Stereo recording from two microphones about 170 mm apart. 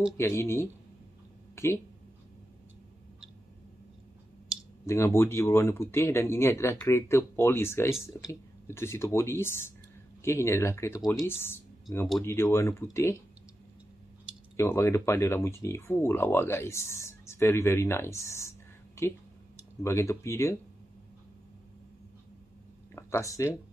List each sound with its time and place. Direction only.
0.2 s speech: 15° left (ahead or behind)
4.5 s clicking: 5° right (ahead or behind)
4.8 s speech: 15° left (ahead or behind)
14.6 s speech: 15° left (ahead or behind)
19.8 s speech: 15° left (ahead or behind)
22.9 s speech: 15° left (ahead or behind)